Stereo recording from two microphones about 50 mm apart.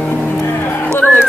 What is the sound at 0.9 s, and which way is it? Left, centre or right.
Music, left.